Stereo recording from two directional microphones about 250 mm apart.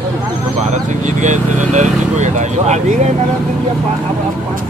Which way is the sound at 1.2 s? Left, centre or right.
Right.